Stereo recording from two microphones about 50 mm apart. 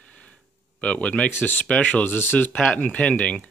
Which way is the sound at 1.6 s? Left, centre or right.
Left.